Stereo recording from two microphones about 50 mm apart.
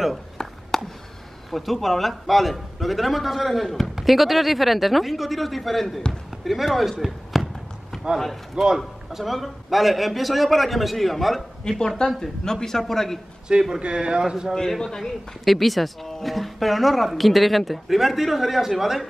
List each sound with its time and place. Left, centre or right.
0.4 s chop: centre
1.5 s speech: centre
8.1 s speech: centre
11.7 s a man's voice: centre
13.5 s speech: centre
14.5 s a man's voice: centre